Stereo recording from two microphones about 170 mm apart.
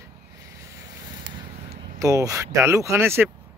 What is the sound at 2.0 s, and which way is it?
Speech, 20° right (ahead or behind).